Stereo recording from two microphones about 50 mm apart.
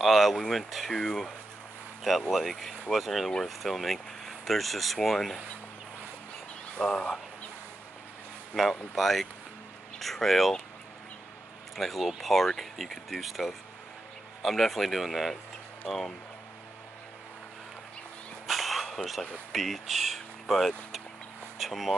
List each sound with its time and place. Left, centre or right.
0.0 s speech: centre
0.9 s speech: centre
2.3 s speech: centre
6.8 s speech: centre
8.5 s speech: centre
11.7 s speech: centre
18.5 s a sound: centre
19.5 s speech: centre